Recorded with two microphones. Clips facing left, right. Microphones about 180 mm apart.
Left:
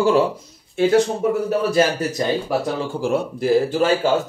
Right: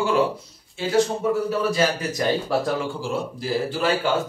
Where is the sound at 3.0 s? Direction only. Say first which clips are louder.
Left 6 dB; 60° left (ahead or behind).